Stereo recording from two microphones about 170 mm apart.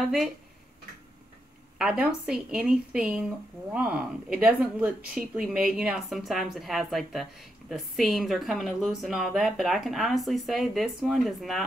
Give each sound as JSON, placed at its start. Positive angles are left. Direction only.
{"t": 0.0, "sound": "speech", "side_deg": 0}
{"t": 1.8, "sound": "speech", "side_deg": -5}